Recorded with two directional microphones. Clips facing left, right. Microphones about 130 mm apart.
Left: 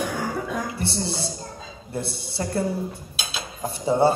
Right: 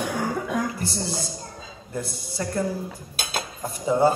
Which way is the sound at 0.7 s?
30° left (ahead or behind).